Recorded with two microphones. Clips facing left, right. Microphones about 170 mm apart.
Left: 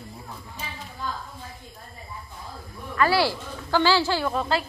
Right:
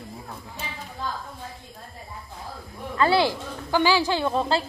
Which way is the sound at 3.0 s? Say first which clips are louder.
Right 1 dB; 20° right (ahead or behind).